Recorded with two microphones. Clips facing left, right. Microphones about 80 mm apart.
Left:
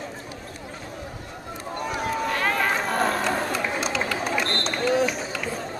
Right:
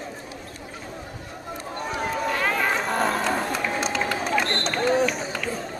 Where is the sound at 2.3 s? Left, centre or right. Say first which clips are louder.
Even; centre.